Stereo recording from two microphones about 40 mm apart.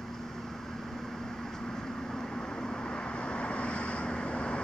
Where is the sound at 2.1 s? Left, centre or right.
Centre.